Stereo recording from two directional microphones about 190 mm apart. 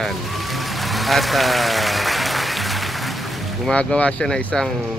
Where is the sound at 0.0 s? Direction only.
Centre (ahead or behind).